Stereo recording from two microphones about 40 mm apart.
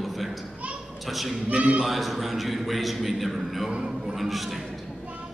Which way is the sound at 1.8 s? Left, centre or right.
Centre.